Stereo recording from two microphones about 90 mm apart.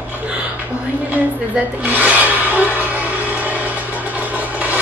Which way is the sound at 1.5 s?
20° right (ahead or behind).